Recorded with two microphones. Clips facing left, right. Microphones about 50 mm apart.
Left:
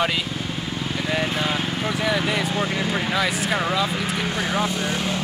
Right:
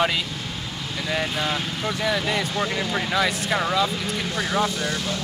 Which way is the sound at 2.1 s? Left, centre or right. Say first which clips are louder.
Left 1 dB; centre.